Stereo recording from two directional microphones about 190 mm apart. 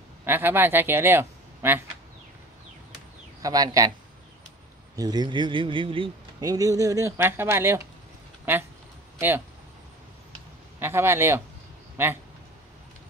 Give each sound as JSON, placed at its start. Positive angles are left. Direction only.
{"t": 0.2, "sound": "speech", "side_deg": -10}
{"t": 3.4, "sound": "a man's voice", "side_deg": -20}
{"t": 4.9, "sound": "a man's voice", "side_deg": -20}
{"t": 10.8, "sound": "a man's voice", "side_deg": -15}